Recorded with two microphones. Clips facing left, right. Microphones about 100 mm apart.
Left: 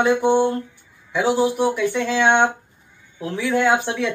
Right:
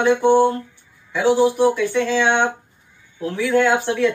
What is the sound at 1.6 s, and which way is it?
A man's voice, 15° left (ahead or behind).